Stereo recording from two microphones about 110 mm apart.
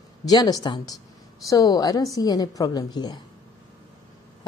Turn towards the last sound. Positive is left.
turn(degrees=40)  # may be behind; listen again after turning